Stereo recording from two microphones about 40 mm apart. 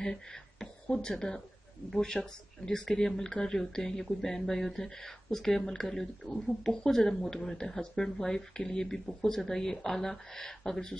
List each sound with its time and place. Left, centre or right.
0.0 s speech: centre